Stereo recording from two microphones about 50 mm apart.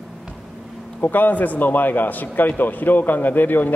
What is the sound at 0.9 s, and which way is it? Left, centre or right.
A man's voice, left.